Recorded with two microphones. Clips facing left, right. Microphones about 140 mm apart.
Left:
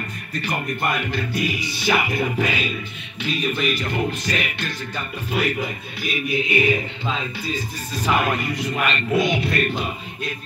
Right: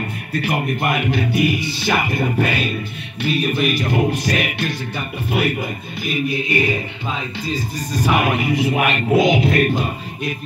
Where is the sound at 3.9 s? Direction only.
60° right (ahead or behind).